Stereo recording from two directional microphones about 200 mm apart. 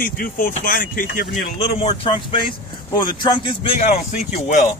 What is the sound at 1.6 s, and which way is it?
Speech, 25° left (ahead or behind).